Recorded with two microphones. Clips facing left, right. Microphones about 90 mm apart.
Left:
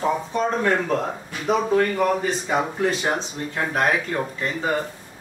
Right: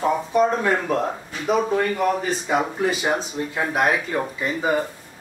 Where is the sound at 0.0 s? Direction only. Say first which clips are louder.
Right 3 dB; 5° right (ahead or behind).